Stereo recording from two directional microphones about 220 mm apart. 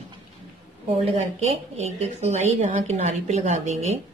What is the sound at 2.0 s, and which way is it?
Speech, 30° right (ahead or behind).